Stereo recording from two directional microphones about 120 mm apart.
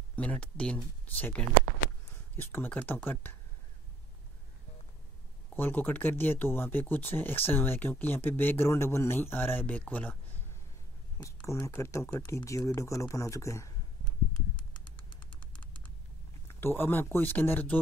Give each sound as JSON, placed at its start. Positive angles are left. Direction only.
{"t": 0.1, "sound": "speech", "side_deg": 10}
{"t": 5.5, "sound": "speech", "side_deg": 15}
{"t": 11.1, "sound": "speech", "side_deg": 25}
{"t": 16.5, "sound": "speech", "side_deg": 20}